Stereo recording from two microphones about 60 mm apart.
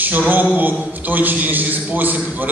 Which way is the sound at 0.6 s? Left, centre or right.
Right.